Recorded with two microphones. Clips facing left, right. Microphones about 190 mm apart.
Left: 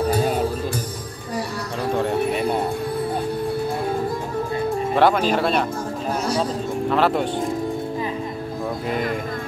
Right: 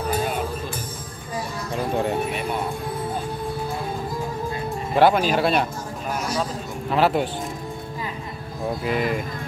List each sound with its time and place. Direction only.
0.1 s music: 35° left (ahead or behind)
4.9 s speech: 5° right (ahead or behind)
6.9 s speech: 5° right (ahead or behind)
8.8 s speech: 5° right (ahead or behind)